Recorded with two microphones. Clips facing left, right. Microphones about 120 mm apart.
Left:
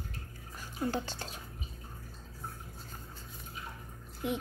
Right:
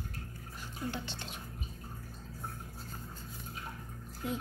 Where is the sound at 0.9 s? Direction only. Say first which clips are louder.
Left 4 dB; 40° left (ahead or behind).